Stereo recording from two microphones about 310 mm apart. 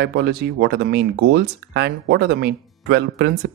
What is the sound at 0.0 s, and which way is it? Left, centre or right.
Speech, right.